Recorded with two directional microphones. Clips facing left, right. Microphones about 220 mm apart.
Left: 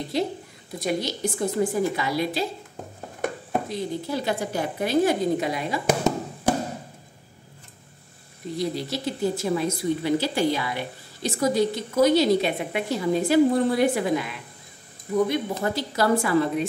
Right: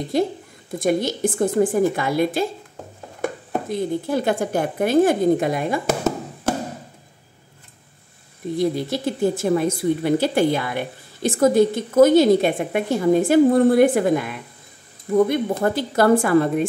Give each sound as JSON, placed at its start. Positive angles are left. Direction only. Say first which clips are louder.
{"t": 0.1, "sound": "speech", "louder": "right 6 dB", "side_deg": -50}
{"t": 3.6, "sound": "speech", "louder": "right 5 dB", "side_deg": -50}
{"t": 5.9, "sound": "a sound", "louder": "right 1 dB", "side_deg": 15}
{"t": 8.5, "sound": "speech", "louder": "right 6 dB", "side_deg": -50}